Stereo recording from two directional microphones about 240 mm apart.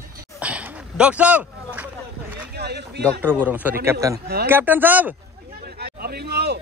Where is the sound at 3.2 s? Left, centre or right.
Centre.